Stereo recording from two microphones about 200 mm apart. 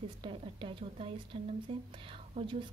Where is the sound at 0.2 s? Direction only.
25° right (ahead or behind).